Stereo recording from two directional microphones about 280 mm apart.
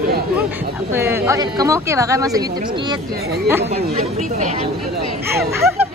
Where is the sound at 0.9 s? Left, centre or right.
Centre.